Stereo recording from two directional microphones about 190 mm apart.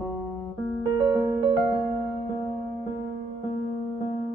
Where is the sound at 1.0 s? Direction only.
20° right (ahead or behind).